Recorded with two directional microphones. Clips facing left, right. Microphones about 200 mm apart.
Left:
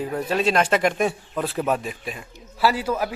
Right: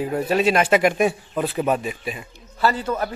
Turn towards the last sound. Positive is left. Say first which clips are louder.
# even
turn(degrees=10)  # may be behind; listen again after turning